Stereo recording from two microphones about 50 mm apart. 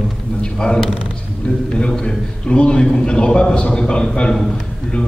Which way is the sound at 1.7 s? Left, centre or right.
Centre.